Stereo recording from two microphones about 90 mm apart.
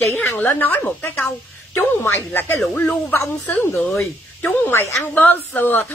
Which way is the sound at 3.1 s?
35° left (ahead or behind).